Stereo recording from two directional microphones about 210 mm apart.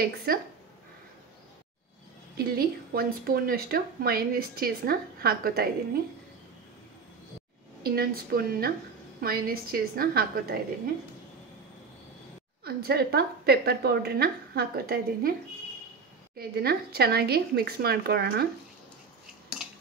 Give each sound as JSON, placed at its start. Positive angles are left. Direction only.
{"t": 0.0, "sound": "speech", "side_deg": -45}
{"t": 2.3, "sound": "speech", "side_deg": -45}
{"t": 7.8, "sound": "speech", "side_deg": -45}
{"t": 12.6, "sound": "speech", "side_deg": -50}
{"t": 16.3, "sound": "speech", "side_deg": -50}
{"t": 19.6, "sound": "a sound", "side_deg": -5}